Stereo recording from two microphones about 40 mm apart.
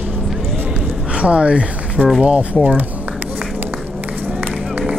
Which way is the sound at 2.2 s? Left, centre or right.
Right.